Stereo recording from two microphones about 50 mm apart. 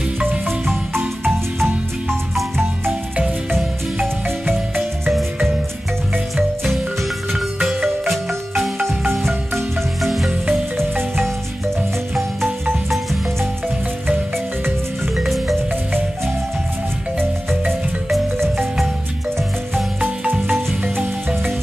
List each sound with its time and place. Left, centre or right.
0.2 s marimba: right
1.6 s music: centre
4.5 s music: right
6.3 s music: centre
9.0 s marimba: centre
15.1 s marimba: centre
17.2 s marimba: centre